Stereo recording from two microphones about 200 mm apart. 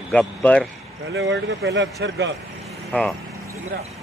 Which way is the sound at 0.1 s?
5° left (ahead or behind).